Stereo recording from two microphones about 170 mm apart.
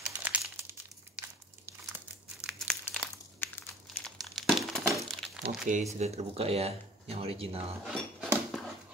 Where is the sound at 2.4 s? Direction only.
Centre (ahead or behind).